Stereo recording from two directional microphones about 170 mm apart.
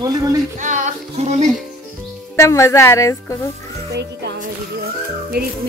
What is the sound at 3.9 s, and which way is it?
Music, 80° right.